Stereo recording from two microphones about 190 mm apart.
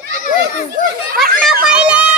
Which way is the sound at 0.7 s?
50° right (ahead or behind).